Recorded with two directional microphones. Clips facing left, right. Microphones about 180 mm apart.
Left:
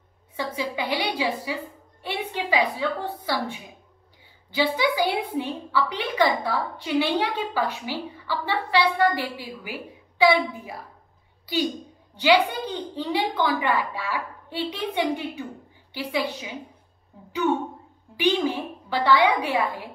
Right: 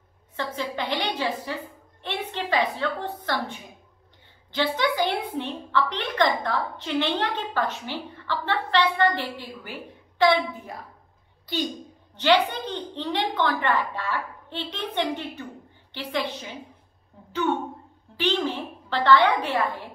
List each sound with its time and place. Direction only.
0.4 s a woman's voice: 10° left (ahead or behind)